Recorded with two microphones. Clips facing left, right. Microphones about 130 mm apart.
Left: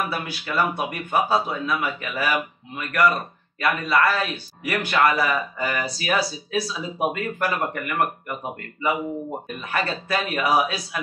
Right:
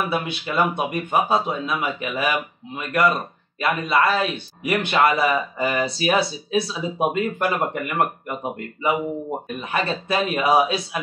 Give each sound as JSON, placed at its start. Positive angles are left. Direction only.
{"t": 0.1, "sound": "a man's voice", "side_deg": -20}
{"t": 9.6, "sound": "a man's voice", "side_deg": -25}